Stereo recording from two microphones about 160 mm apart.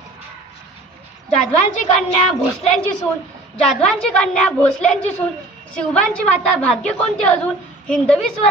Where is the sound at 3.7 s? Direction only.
5° left (ahead or behind).